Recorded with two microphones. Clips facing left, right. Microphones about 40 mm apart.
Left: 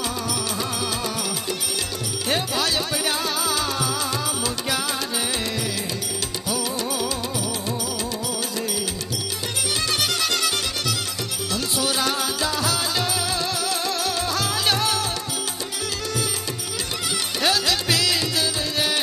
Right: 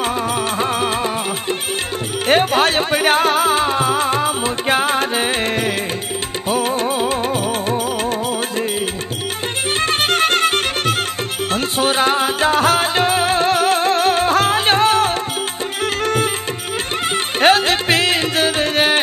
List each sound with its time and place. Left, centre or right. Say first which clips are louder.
0.6 s music: right 8 dB; right
2.2 s music: right 10 dB; right
9.8 s music: right 9 dB; right
17.4 s music: right 9 dB; right